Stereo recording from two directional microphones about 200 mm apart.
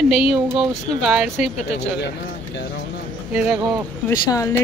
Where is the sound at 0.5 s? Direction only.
Centre (ahead or behind).